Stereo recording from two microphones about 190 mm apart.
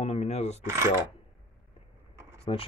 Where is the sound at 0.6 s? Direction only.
15° right (ahead or behind).